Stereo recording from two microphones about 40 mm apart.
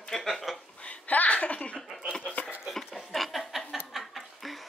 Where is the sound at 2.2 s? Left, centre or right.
Left.